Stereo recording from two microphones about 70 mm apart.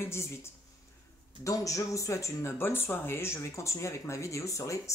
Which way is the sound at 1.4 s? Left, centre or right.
Left.